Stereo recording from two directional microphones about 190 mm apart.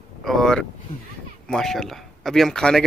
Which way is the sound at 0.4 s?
5° left (ahead or behind).